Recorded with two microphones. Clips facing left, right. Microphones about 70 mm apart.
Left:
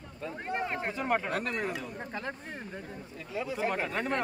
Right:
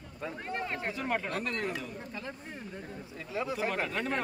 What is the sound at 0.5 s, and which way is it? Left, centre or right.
Speech, centre.